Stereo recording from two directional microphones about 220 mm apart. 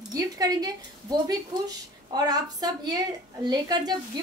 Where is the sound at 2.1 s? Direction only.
15° right (ahead or behind).